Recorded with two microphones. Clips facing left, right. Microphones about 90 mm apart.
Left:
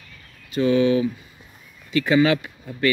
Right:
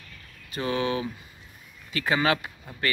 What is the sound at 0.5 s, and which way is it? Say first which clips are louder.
Speech: left 9 dB; 35° right (ahead or behind).